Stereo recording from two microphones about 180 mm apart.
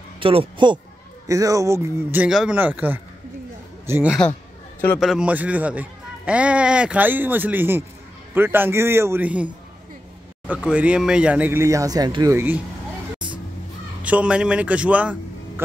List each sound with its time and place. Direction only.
0.2 s a man's voice: 30° right (ahead or behind)
1.2 s a man's voice: 20° right (ahead or behind)
4.8 s a man's voice: 5° left (ahead or behind)
10.5 s a man's voice: 5° right (ahead or behind)
14.0 s a man's voice: 5° right (ahead or behind)